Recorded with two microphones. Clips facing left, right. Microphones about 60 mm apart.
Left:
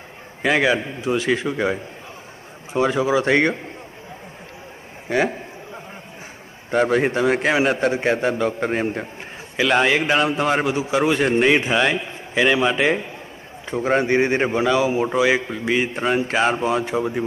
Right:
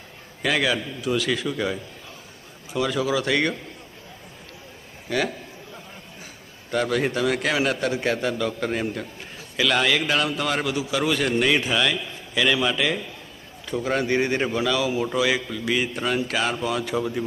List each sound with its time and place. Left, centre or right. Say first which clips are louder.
0.4 s a man's voice: left 5 dB; left
5.0 s a sound: left 5 dB; left
6.7 s a man's voice: left 5 dB; left